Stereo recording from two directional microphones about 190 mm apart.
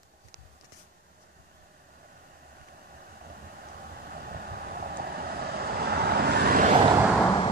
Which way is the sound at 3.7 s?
50° right (ahead or behind).